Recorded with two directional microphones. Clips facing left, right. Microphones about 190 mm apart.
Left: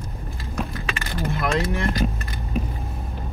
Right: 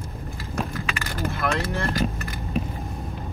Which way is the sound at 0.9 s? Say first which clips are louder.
Left 4 dB; 15° left (ahead or behind).